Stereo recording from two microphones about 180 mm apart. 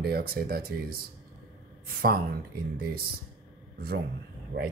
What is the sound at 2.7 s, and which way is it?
Speech, 55° right (ahead or behind).